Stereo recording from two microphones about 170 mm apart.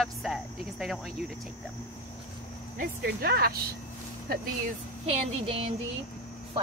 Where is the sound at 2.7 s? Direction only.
65° right (ahead or behind).